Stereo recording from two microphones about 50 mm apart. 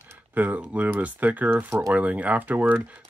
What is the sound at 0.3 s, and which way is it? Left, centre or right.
Speech, right.